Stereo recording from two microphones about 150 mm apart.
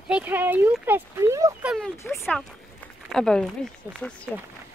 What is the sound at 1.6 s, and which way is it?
Speech, 5° right (ahead or behind).